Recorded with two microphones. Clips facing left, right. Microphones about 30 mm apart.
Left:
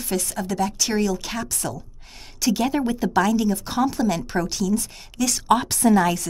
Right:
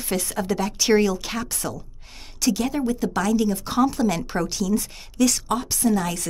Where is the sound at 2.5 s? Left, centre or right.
Centre.